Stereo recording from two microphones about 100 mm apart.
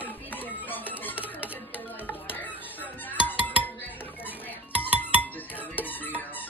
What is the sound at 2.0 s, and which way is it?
Squawk, 20° left (ahead or behind).